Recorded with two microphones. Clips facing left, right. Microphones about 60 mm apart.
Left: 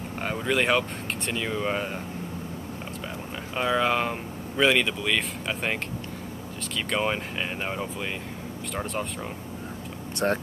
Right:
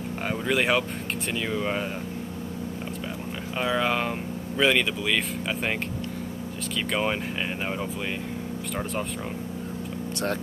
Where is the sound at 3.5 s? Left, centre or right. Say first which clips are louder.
Left 1 dB; centre.